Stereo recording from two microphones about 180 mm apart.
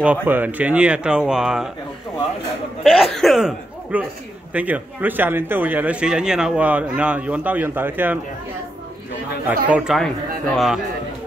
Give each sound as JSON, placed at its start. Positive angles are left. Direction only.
{"t": 0.0, "sound": "speech", "side_deg": -10}
{"t": 2.8, "sound": "speech", "side_deg": 0}
{"t": 9.5, "sound": "speech", "side_deg": -5}